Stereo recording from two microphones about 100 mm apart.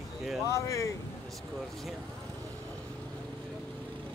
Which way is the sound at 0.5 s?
30° left (ahead or behind).